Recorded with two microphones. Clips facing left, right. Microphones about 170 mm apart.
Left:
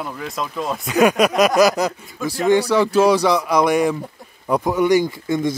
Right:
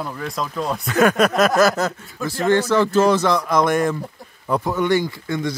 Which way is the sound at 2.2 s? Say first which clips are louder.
Left 2 dB; centre (ahead or behind).